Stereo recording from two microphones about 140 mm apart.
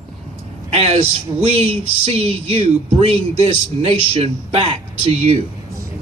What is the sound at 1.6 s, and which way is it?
Speech, 45° right (ahead or behind).